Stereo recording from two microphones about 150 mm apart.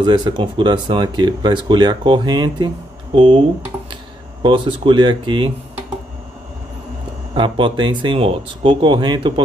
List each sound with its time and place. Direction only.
0.0 s speech: 30° right (ahead or behind)
7.3 s speech: 35° right (ahead or behind)